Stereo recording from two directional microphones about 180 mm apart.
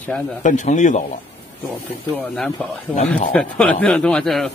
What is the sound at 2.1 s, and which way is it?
Speech, 5° left (ahead or behind).